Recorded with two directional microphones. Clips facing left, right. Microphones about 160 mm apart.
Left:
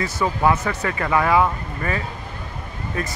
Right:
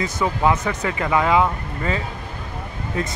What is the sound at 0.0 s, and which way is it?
Speech, 15° right (ahead or behind).